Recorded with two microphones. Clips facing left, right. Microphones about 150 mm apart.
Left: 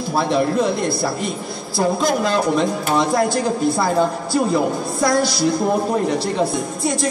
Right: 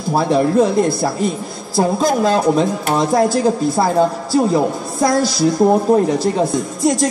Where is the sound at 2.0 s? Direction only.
40° right (ahead or behind).